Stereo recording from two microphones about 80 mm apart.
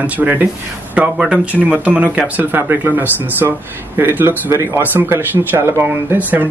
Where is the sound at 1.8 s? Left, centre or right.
Centre.